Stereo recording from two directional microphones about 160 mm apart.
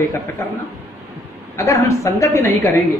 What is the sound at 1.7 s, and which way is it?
Speech, 20° left (ahead or behind).